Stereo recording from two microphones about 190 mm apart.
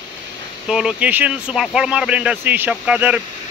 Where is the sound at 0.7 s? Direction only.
5° right (ahead or behind).